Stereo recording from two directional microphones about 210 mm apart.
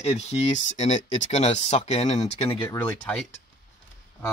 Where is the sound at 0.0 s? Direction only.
30° left (ahead or behind).